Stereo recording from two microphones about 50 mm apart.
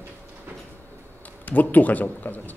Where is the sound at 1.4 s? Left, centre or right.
Left.